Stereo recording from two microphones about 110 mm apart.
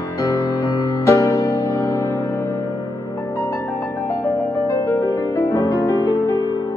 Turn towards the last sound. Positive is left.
turn(degrees=30)  # may be behind; listen again after turning